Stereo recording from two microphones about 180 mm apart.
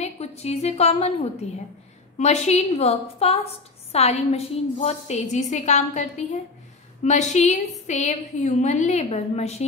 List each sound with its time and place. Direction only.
0.0 s a woman's voice: 35° left (ahead or behind)
2.1 s a woman's voice: 40° left (ahead or behind)